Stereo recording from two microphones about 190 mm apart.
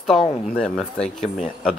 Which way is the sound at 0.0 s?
5° left (ahead or behind).